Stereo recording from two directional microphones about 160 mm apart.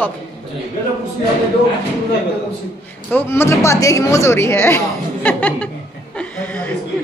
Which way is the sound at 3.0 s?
15° left (ahead or behind).